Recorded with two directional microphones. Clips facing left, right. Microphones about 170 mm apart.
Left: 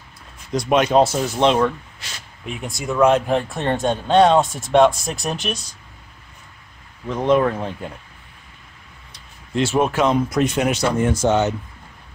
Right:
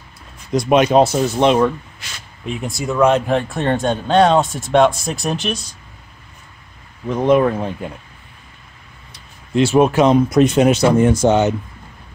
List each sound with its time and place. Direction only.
0.5 s speech: 15° right (ahead or behind)
2.0 s a sound: 35° left (ahead or behind)
2.4 s speech: centre (ahead or behind)
7.1 s speech: 10° right (ahead or behind)
9.1 s speech: 10° right (ahead or behind)